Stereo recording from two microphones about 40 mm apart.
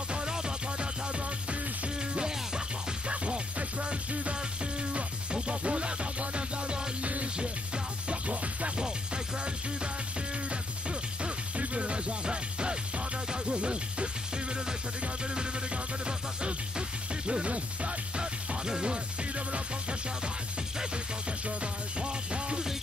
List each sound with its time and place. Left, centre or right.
0.1 s music: centre
2.1 s music: centre
3.1 s music: right
10.5 s music: right
15.3 s music: right
22.0 s music: right